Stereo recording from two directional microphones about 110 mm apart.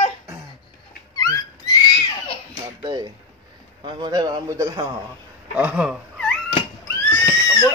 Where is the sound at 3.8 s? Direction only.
40° right (ahead or behind).